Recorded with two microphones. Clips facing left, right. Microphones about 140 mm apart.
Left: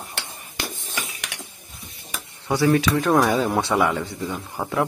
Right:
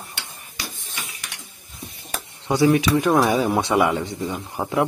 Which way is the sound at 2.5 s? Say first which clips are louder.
Right 2 dB; 20° right (ahead or behind).